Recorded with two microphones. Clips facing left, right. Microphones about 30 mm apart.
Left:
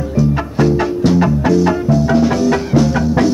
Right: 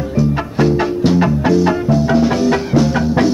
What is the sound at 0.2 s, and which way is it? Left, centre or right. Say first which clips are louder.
Music: left 1 dB; right.